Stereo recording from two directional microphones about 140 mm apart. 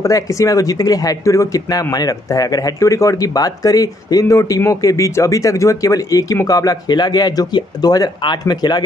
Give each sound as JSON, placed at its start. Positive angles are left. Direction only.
{"t": 0.0, "sound": "speech", "side_deg": 25}